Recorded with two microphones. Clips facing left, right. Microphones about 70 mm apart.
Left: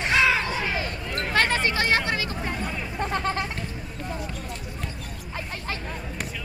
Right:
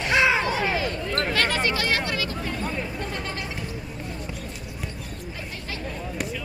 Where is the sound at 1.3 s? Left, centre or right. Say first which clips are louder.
Left 4 dB; left.